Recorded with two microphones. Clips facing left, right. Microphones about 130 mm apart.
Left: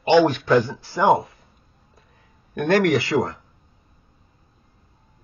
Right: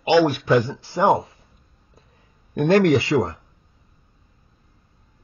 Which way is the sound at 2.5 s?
25° right (ahead or behind).